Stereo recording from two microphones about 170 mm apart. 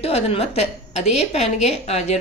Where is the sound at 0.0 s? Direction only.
35° left (ahead or behind).